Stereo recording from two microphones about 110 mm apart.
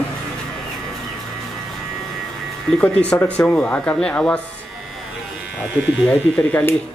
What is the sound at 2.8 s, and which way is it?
Speech, 15° left (ahead or behind).